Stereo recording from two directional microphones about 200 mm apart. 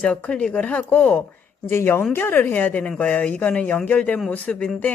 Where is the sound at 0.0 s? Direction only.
5° left (ahead or behind).